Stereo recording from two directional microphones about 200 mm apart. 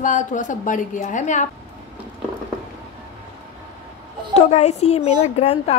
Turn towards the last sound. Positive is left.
turn(degrees=30)  # may be behind; listen again after turning